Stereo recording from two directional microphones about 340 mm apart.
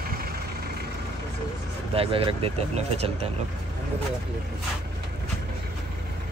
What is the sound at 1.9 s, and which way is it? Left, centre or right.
Speech, centre.